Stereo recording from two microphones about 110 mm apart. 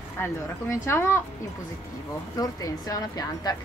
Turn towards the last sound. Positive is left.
turn(degrees=35)  # may be behind; listen again after turning